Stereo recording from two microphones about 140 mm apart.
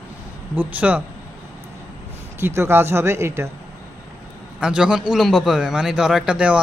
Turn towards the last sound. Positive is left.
turn(degrees=-5)  # may be behind; listen again after turning